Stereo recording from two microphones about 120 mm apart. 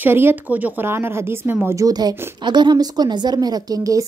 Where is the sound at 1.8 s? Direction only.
30° right (ahead or behind).